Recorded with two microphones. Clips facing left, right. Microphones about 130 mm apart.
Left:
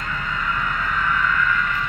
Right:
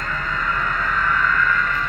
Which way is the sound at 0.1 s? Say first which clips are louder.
Right 1 dB; 20° left (ahead or behind).